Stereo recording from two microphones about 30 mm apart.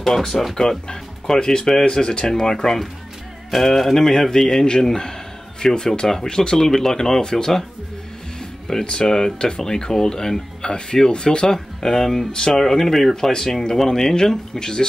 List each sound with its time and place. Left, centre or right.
0.0 s speech: centre
0.6 s speech: centre
3.5 s speech: centre
4.0 s speech: centre
8.7 s speech: left
12.5 s speech: centre
13.1 s speech: centre